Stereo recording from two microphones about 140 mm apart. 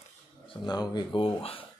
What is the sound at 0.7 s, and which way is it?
Speech, 30° left (ahead or behind).